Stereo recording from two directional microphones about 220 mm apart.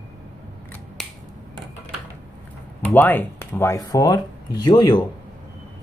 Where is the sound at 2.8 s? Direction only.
10° left (ahead or behind).